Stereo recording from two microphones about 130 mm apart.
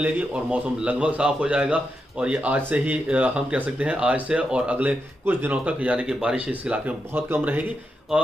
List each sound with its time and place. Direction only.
0.0 s a man's voice: 10° right (ahead or behind)